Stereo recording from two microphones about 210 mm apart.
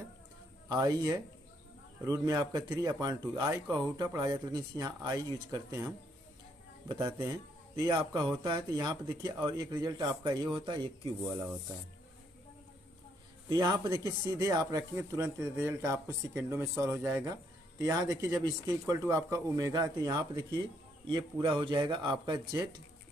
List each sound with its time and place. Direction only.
0.7 s speech: 20° right (ahead or behind)
13.5 s speech: 20° right (ahead or behind)